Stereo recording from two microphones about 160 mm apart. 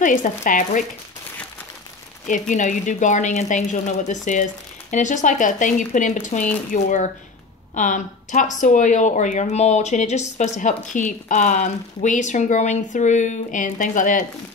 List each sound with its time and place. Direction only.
0.0 s speech: 50° left (ahead or behind)
2.2 s speech: 50° left (ahead or behind)